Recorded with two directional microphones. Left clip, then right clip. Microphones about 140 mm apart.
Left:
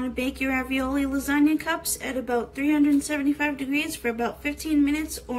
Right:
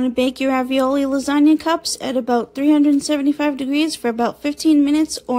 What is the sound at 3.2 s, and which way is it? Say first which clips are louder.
A woman's voice: right 6 dB; 50° right (ahead or behind).